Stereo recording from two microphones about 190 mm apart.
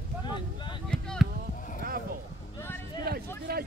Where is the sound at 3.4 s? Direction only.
55° right (ahead or behind).